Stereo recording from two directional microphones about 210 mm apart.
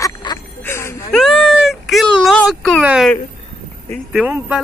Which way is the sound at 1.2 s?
Centre (ahead or behind).